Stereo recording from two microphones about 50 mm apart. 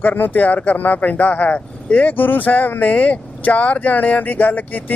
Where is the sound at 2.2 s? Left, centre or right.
Left.